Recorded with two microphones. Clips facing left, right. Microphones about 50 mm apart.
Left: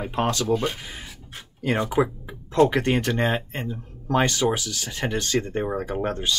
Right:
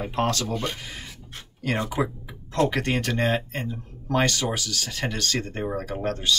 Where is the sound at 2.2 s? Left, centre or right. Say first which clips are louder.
Left 6 dB; left.